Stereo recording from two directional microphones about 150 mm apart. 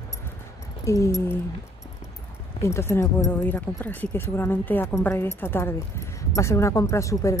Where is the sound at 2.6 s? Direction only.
20° left (ahead or behind).